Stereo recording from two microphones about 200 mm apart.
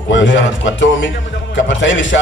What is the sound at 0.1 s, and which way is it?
A man's voice, 65° left (ahead or behind).